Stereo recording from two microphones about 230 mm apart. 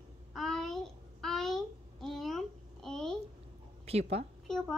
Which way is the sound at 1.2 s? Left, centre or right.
Centre.